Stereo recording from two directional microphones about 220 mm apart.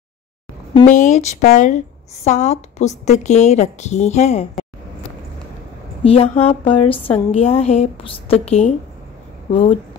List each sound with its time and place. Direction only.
0.8 s a woman's voice: 35° left (ahead or behind)
6.0 s a woman's voice: 25° left (ahead or behind)